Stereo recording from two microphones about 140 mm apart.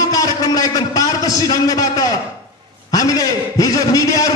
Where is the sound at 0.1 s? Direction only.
25° left (ahead or behind).